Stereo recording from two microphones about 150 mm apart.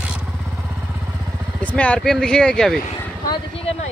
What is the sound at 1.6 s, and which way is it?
Speech, 10° left (ahead or behind).